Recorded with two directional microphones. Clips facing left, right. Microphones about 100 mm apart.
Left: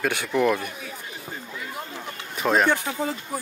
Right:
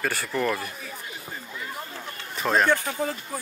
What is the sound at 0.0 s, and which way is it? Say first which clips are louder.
Speech: left 4 dB; centre (ahead or behind).